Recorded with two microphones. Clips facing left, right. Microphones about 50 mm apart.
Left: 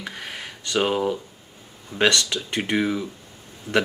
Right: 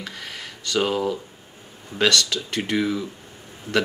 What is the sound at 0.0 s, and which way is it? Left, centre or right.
Speech, centre.